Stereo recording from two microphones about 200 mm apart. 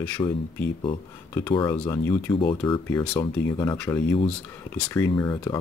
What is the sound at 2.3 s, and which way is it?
Speech, 25° left (ahead or behind).